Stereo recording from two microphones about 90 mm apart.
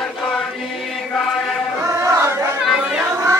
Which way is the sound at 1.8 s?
35° right (ahead or behind).